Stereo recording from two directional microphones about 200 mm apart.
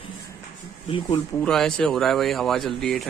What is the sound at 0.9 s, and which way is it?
Speech, 25° left (ahead or behind).